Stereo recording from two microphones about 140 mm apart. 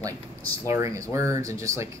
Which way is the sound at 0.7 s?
20° right (ahead or behind).